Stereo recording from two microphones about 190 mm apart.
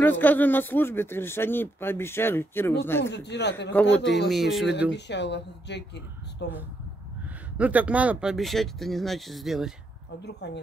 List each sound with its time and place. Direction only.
0.0 s speech: 10° left (ahead or behind)
3.0 s a woman's voice: 65° left (ahead or behind)
4.3 s speech: centre (ahead or behind)
4.9 s a woman's voice: 65° left (ahead or behind)
7.5 s speech: 5° right (ahead or behind)
10.2 s a woman's voice: 60° left (ahead or behind)